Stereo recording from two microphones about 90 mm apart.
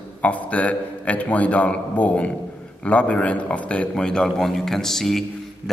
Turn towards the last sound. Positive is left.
turn(degrees=5)  # may be behind; listen again after turning